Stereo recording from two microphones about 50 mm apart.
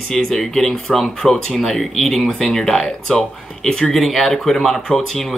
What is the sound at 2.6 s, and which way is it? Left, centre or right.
Speech, centre.